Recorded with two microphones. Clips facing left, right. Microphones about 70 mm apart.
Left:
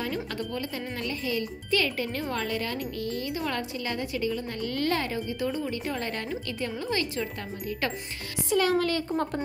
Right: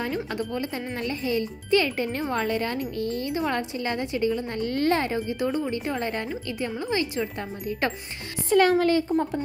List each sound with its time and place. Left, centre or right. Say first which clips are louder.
0.0 s speech: right 3 dB; right
8.5 s a woman's voice: right 5 dB; right
8.7 s speech: right 5 dB; right
9.1 s a woman's voice: right 4 dB; centre